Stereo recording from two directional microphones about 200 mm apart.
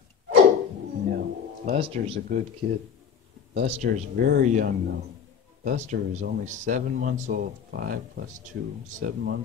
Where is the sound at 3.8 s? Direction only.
45° right (ahead or behind).